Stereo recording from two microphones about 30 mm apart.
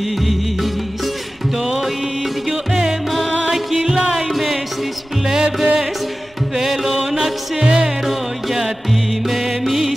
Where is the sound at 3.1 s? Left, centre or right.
Centre.